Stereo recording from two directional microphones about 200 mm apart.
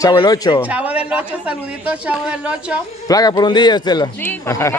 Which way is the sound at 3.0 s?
20° left (ahead or behind).